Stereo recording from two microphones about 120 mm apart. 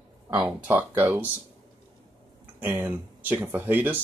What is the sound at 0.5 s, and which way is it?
Speech, 15° right (ahead or behind).